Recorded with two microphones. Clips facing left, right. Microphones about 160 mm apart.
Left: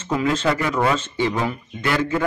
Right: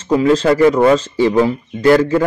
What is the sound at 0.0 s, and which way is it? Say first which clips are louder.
A man's voice: right 8 dB; 35° right (ahead or behind).